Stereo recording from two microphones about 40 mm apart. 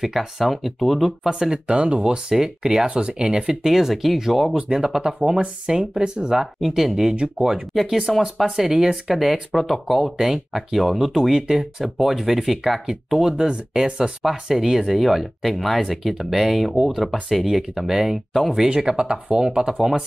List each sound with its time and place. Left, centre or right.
0.0 s speech: centre
1.3 s speech: centre
4.6 s speech: centre
6.4 s speech: centre
13.5 s speech: centre